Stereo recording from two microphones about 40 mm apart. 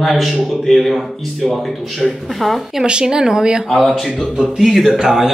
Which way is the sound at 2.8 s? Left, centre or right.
Right.